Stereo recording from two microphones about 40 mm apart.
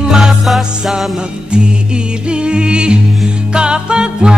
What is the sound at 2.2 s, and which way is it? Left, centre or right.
Music, right.